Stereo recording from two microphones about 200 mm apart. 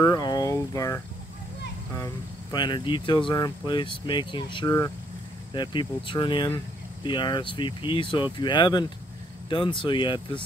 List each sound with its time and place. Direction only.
0.0 s speech: 20° left (ahead or behind)
2.5 s speech: 20° left (ahead or behind)